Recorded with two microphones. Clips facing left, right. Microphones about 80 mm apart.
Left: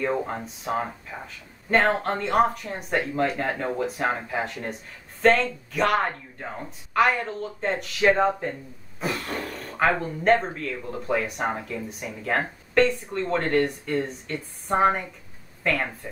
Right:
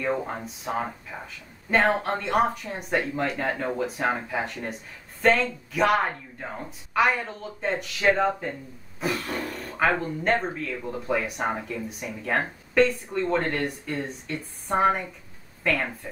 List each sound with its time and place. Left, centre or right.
0.0 s speech: centre
8.0 s speech: centre
9.0 s speech: centre